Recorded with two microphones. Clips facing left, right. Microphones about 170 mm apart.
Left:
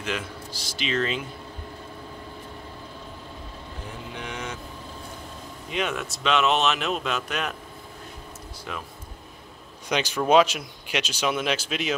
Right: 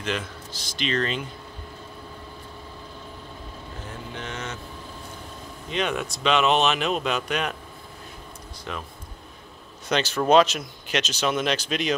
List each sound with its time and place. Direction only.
0.0 s speech: 10° left (ahead or behind)
4.1 s speech: 10° left (ahead or behind)
5.7 s speech: 5° left (ahead or behind)
8.7 s speech: 5° left (ahead or behind)
9.8 s speech: 10° left (ahead or behind)